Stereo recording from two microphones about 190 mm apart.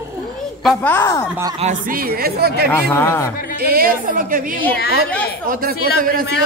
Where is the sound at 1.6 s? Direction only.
45° right (ahead or behind).